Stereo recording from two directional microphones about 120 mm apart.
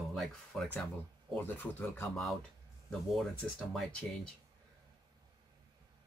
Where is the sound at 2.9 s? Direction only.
5° left (ahead or behind).